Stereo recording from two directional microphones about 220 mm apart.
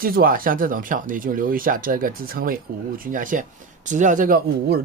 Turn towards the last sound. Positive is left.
turn(degrees=-45)  # may be behind; listen again after turning